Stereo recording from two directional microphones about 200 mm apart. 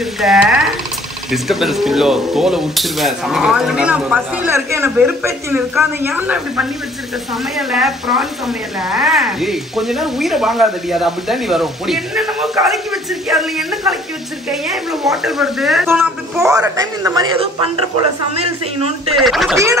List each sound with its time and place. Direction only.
0.2 s speech: 5° right (ahead or behind)
16.3 s a man's voice: 15° right (ahead or behind)
17.9 s a woman's voice: 30° right (ahead or behind)
19.1 s speech: centre (ahead or behind)